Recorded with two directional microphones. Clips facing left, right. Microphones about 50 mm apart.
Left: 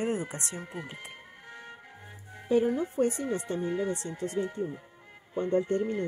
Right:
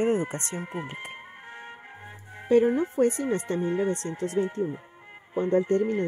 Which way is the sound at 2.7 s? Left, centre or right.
Right.